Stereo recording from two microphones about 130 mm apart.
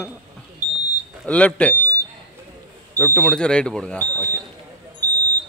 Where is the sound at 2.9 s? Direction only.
10° left (ahead or behind).